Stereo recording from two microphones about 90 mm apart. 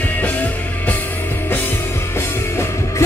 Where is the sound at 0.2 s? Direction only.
20° left (ahead or behind).